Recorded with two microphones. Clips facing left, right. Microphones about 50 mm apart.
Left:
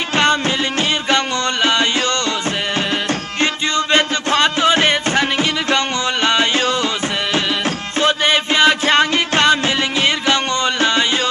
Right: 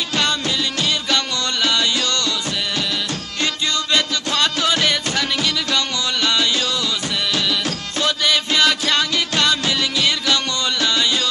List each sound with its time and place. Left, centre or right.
0.1 s music: left
3.3 s music: left
8.0 s music: left